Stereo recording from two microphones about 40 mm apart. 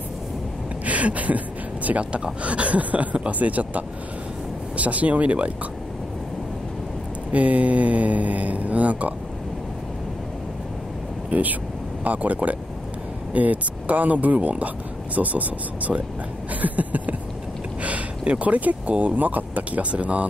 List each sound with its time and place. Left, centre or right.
0.8 s speech: right
7.3 s speech: right
11.2 s speech: right